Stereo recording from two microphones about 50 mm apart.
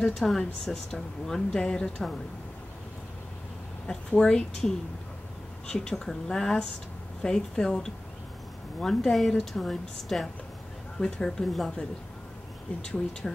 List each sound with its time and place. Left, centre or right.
0.0 s speech: centre
3.8 s a woman's voice: centre
12.8 s speech: centre